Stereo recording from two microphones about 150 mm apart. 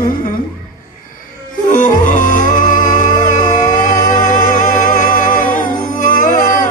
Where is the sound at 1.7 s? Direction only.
60° left (ahead or behind).